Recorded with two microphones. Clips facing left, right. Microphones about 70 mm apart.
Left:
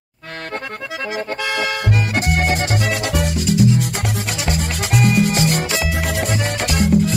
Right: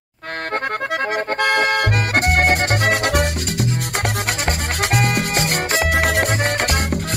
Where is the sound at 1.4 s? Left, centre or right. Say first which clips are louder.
Right 6 dB; right.